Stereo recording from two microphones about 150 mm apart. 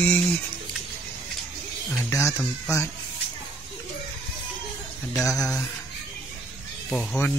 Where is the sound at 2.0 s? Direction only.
20° left (ahead or behind).